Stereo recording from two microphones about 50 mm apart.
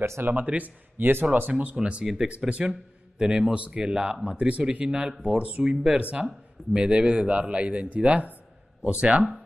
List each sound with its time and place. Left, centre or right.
0.2 s speech: right
4.6 s speech: centre